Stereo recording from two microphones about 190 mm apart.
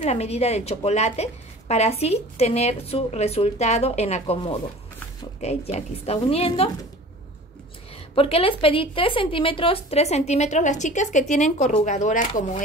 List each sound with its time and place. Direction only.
0.0 s a woman's voice: 35° left (ahead or behind)
8.1 s a woman's voice: 30° left (ahead or behind)